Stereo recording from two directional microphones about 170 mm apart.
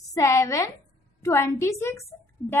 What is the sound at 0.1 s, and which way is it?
A woman's voice, 15° left (ahead or behind).